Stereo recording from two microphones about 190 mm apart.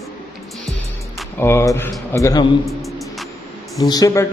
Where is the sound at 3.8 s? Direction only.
20° left (ahead or behind).